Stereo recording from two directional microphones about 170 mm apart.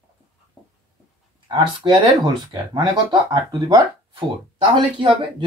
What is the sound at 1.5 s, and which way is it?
Speech, 30° right (ahead or behind).